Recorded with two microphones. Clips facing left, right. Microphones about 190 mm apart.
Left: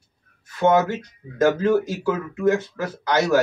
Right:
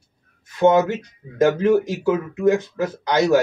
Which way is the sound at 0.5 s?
20° right (ahead or behind).